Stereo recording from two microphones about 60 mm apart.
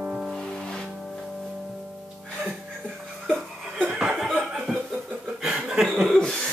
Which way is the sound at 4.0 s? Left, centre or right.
Centre.